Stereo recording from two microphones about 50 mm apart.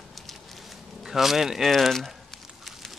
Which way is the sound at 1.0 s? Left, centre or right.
Centre.